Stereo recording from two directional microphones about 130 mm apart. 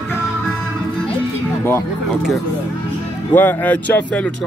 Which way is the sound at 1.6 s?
20° left (ahead or behind).